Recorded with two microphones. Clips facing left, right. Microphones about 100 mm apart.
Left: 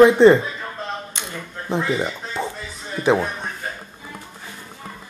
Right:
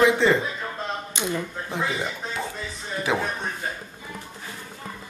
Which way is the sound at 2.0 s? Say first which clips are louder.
Left 4 dB; 25° left (ahead or behind).